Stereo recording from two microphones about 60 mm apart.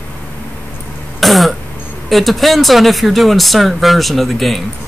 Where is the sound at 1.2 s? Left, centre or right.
Centre.